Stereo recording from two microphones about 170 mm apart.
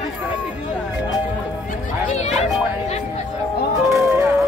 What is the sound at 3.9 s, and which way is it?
Music, 15° right (ahead or behind).